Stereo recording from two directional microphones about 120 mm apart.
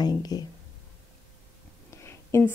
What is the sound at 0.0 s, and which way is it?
Speech, 35° left (ahead or behind).